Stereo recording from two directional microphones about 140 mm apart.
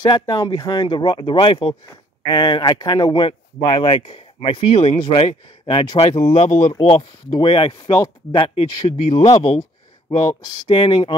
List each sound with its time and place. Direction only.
0.0 s speech: 30° left (ahead or behind)